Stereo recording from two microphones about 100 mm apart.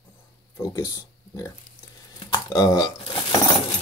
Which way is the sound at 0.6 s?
30° left (ahead or behind).